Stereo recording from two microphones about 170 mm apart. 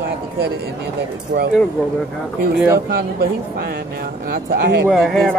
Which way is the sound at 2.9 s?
60° right (ahead or behind).